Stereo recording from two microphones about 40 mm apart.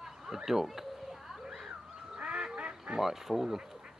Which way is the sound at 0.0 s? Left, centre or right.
Centre.